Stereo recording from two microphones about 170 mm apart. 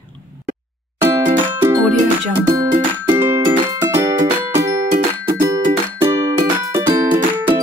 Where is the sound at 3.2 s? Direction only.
15° right (ahead or behind).